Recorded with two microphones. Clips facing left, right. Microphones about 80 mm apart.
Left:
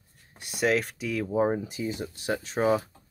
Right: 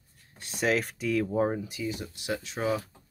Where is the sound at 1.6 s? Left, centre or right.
Left.